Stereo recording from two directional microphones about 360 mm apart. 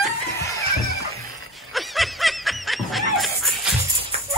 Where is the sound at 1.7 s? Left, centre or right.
Centre.